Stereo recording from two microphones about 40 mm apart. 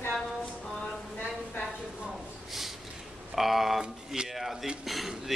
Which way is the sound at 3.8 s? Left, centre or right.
Centre.